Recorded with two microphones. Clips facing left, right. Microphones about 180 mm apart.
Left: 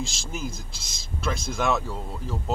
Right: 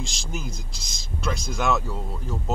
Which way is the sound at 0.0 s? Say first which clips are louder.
Left 1 dB; centre (ahead or behind).